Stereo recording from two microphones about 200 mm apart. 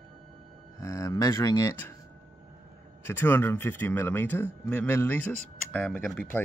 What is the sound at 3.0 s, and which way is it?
Speech, 10° left (ahead or behind).